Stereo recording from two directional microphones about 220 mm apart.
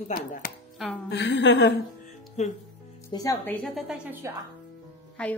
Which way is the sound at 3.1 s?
15° left (ahead or behind).